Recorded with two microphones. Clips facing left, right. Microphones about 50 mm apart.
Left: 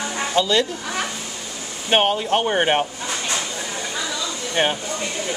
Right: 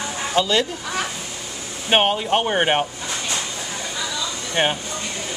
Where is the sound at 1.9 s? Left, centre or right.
Centre.